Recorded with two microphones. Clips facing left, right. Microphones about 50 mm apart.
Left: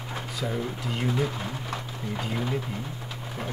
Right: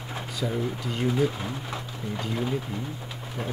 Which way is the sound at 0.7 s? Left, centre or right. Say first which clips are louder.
Right 2 dB; centre.